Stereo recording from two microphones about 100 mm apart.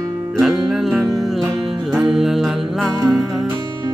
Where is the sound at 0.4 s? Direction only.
Centre (ahead or behind).